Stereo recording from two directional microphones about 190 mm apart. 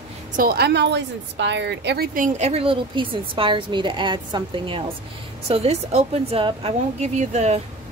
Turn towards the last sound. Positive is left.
turn(degrees=-35)  # may be behind; listen again after turning